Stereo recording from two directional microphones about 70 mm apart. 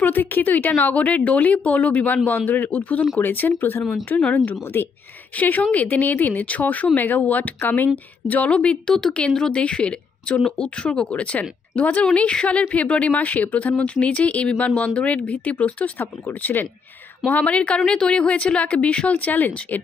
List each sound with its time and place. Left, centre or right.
0.0 s a woman's voice: left